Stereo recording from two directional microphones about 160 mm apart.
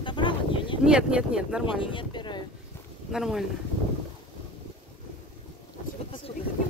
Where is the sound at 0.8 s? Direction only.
5° right (ahead or behind).